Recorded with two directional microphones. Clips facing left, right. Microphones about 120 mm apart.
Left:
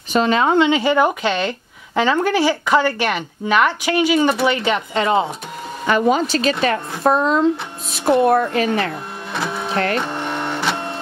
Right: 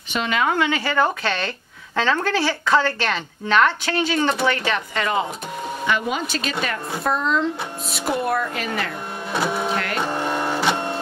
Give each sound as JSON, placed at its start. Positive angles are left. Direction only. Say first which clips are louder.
{"t": 0.1, "sound": "speech", "louder": "left 6 dB", "side_deg": 35}
{"t": 4.6, "sound": "speech", "louder": "left 5 dB", "side_deg": 20}
{"t": 5.9, "sound": "speech", "louder": "left 8 dB", "side_deg": 40}
{"t": 8.0, "sound": "speech", "louder": "left 8 dB", "side_deg": 25}
{"t": 9.3, "sound": "printer", "louder": "right 1 dB", "side_deg": -5}